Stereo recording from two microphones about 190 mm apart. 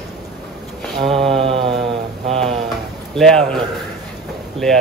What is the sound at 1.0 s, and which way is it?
Speech, centre (ahead or behind).